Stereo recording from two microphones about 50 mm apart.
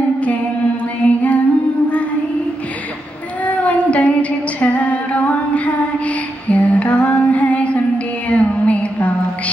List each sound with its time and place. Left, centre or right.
1.0 s music: left
3.4 s female singing: left
8.3 s a sound: left